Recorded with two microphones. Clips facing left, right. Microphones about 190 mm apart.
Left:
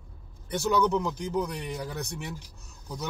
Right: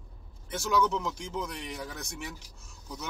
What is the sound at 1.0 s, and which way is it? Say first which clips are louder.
Speech: left 6 dB; 35° left (ahead or behind).